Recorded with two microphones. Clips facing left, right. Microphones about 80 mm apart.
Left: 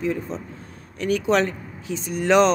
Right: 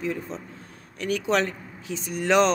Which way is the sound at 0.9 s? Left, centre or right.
Left.